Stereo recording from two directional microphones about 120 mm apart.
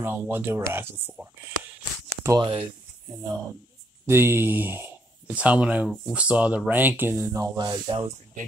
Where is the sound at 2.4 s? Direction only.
50° right (ahead or behind).